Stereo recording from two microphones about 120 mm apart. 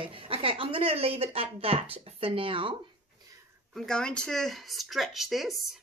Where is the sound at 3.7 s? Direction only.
5° left (ahead or behind).